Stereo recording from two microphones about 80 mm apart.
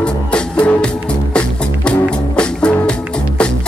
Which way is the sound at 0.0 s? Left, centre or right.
Centre.